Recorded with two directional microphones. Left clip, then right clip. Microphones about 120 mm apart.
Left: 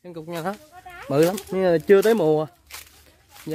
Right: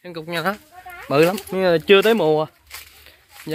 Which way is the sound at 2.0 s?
60° left (ahead or behind).